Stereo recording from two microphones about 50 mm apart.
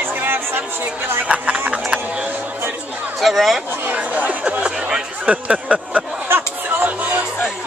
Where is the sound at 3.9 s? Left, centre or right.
Right.